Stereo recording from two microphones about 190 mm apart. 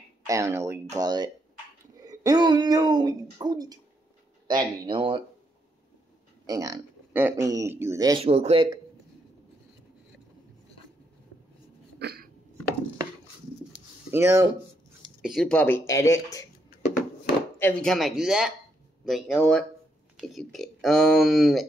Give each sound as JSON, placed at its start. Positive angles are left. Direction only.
{"t": 0.3, "sound": "speech", "side_deg": -15}
{"t": 6.4, "sound": "speech", "side_deg": -20}
{"t": 8.2, "sound": "speech", "side_deg": -30}
{"t": 12.0, "sound": "cough", "side_deg": -60}
{"t": 14.1, "sound": "speech", "side_deg": -15}
{"t": 15.2, "sound": "speech", "side_deg": 0}
{"t": 17.6, "sound": "speech", "side_deg": 5}